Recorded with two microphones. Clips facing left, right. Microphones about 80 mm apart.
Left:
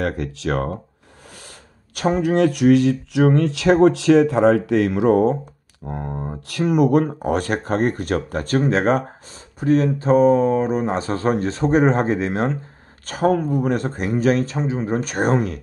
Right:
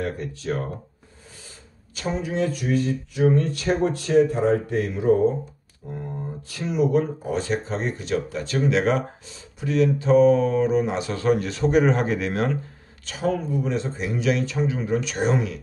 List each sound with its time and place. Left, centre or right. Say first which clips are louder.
0.0 s speech: left 5 dB; left
2.0 s speech: left 8 dB; left
5.9 s speech: left 4 dB; left
13.0 s speech: left 6 dB; left